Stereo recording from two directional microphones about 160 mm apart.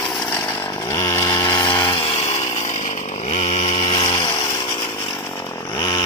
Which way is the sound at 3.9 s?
35° left (ahead or behind).